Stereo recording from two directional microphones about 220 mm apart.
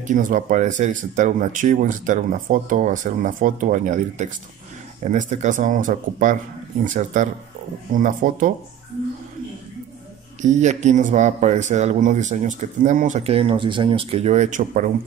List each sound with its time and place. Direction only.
0.0 s speech: 35° right (ahead or behind)
10.4 s speech: 30° right (ahead or behind)